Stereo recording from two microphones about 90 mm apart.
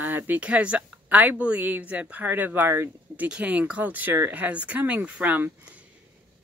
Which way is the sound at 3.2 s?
15° right (ahead or behind).